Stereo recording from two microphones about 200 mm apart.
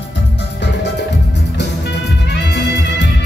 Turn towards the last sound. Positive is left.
turn(degrees=60)  # may be behind; listen again after turning